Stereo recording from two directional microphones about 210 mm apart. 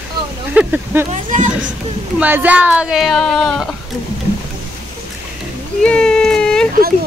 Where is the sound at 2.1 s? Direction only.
10° right (ahead or behind).